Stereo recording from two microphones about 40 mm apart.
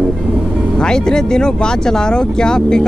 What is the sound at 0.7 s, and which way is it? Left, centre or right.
Speech, centre.